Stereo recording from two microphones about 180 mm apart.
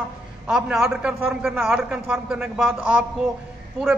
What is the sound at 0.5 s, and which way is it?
A man's voice, 5° right (ahead or behind).